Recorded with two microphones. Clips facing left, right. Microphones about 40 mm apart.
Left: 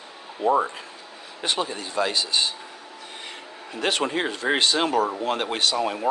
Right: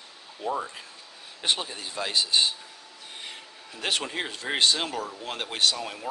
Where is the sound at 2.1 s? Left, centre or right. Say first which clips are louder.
Even; centre.